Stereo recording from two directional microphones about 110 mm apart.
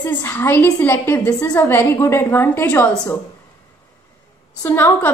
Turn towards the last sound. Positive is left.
turn(degrees=20)  # may be behind; listen again after turning